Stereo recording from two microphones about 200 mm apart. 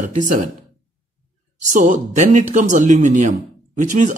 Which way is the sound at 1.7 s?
40° right (ahead or behind).